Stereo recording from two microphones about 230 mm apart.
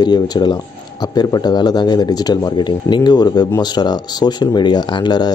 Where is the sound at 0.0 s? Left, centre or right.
Centre.